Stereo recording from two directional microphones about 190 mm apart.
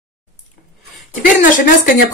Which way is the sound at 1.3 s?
45° left (ahead or behind).